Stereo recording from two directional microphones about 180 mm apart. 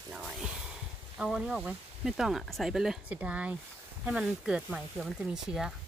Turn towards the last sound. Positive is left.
turn(degrees=-5)  # may be behind; listen again after turning